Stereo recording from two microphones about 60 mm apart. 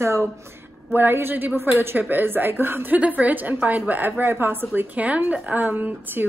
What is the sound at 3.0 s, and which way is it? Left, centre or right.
A woman's voice, right.